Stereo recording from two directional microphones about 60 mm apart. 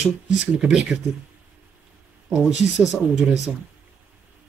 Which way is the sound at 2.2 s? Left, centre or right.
Centre.